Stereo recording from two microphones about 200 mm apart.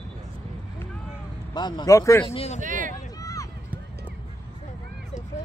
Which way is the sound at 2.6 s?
40° right (ahead or behind).